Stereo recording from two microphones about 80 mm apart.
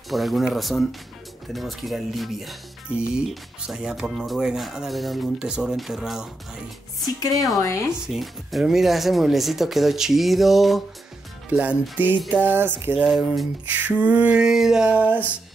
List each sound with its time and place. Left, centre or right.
0.1 s speech: centre
3.1 s a sound: centre
4.2 s speech: centre
7.5 s speech: left
8.1 s speech: centre
11.5 s music: right
13.1 s speech: centre
13.8 s a sound: centre